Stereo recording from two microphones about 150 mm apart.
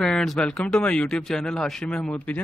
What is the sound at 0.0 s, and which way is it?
Speech, 5° left (ahead or behind).